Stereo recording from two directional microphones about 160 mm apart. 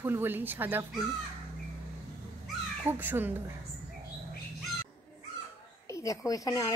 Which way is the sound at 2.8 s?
10° right (ahead or behind).